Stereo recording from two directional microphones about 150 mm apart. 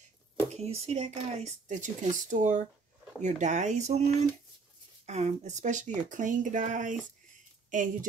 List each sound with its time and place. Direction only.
0.6 s speech: 45° right (ahead or behind)